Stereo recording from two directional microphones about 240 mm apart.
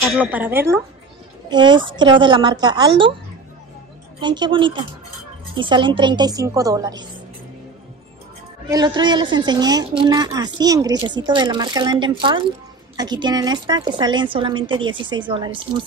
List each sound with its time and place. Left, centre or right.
0.1 s a woman's voice: centre
4.2 s a woman's voice: centre
8.6 s a woman's voice: centre